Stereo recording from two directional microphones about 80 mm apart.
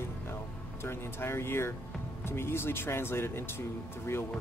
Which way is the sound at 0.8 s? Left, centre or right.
Left.